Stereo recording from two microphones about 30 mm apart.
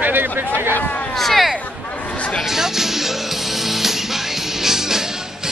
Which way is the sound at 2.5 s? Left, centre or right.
Centre.